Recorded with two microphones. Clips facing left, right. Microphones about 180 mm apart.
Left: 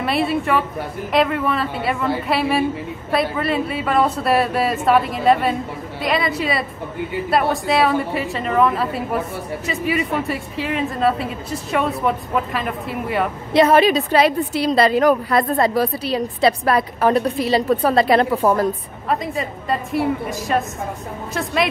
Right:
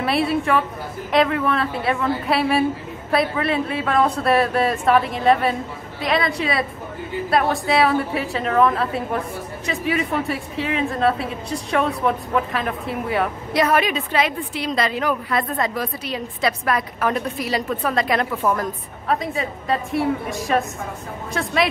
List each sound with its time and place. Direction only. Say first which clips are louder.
0.0 s speech: even; centre (ahead or behind)
13.5 s a woman's voice: left 7 dB; 25° left (ahead or behind)
19.0 s speech: left 1 dB; centre (ahead or behind)